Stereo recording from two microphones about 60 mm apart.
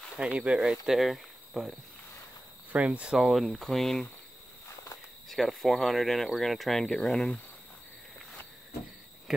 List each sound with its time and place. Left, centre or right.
0.2 s speech: centre
2.7 s speech: right
3.1 s speech: centre
5.3 s speech: centre